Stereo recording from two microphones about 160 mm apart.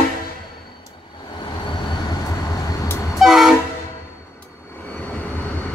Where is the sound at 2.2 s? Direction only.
25° left (ahead or behind).